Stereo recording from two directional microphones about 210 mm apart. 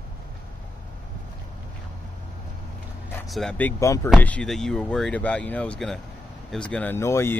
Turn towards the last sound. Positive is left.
turn(degrees=10)  # may be behind; listen again after turning